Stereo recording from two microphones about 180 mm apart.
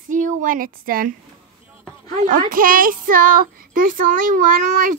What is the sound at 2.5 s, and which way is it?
A child's voice, 50° right (ahead or behind).